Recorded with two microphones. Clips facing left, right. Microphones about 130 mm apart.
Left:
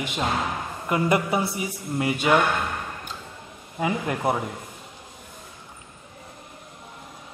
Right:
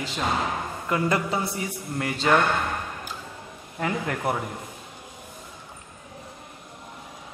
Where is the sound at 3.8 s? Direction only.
15° left (ahead or behind).